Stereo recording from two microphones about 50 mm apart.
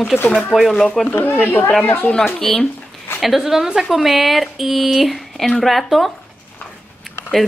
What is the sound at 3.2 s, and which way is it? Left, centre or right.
Speech, centre.